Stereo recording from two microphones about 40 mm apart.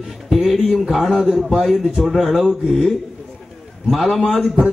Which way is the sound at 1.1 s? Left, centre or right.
Centre.